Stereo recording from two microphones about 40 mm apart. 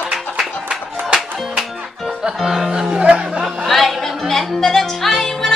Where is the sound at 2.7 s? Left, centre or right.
Centre.